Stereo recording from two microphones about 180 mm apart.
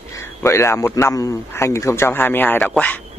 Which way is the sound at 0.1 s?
15° left (ahead or behind).